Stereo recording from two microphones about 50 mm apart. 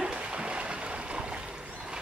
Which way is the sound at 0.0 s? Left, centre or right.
Centre.